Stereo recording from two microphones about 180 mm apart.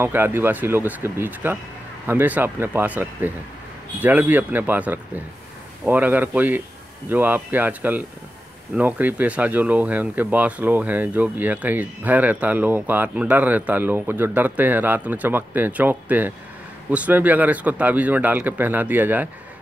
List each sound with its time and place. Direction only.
0.0 s speech: 10° right (ahead or behind)